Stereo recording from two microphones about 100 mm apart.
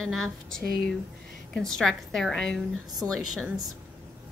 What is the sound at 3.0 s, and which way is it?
Speech, 20° right (ahead or behind).